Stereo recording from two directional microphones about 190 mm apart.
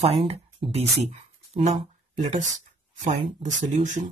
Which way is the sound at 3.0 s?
35° right (ahead or behind).